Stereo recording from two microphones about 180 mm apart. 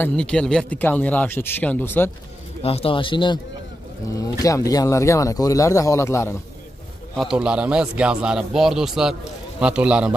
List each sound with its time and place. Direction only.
0.0 s speech: 5° left (ahead or behind)
2.6 s speech: 35° left (ahead or behind); by 6.3 s 15° left (ahead or behind)
7.2 s speech: 5° right (ahead or behind)